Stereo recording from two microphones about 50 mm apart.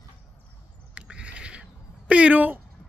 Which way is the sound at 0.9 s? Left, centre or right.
Right.